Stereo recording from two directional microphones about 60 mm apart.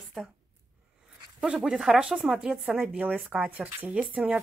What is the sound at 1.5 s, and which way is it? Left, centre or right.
Speech, centre.